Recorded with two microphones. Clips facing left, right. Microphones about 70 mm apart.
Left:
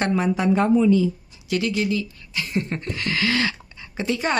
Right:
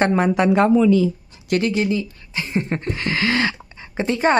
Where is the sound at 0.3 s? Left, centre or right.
Right.